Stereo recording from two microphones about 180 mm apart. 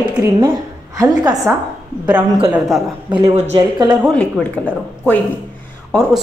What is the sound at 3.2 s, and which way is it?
Speech, 40° right (ahead or behind).